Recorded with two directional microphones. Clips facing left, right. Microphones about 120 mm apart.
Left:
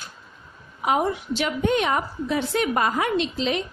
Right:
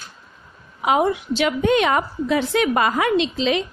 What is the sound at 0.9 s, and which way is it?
A woman's voice, 90° right.